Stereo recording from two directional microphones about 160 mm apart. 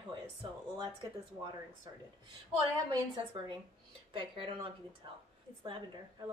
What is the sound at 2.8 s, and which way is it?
A woman's voice, 30° right (ahead or behind).